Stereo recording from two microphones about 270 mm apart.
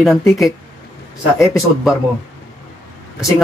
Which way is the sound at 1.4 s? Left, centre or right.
Centre.